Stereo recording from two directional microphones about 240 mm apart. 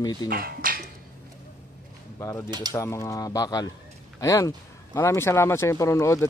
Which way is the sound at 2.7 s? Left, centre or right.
Centre.